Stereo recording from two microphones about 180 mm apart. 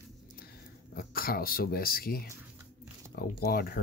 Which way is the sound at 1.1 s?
55° left (ahead or behind).